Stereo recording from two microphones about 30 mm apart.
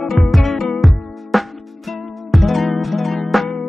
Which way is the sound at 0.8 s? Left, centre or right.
Centre.